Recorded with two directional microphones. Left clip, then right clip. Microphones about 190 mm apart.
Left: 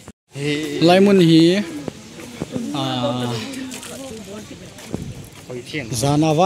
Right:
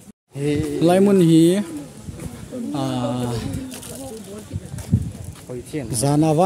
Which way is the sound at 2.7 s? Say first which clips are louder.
Left 2 dB; 25° right (ahead or behind).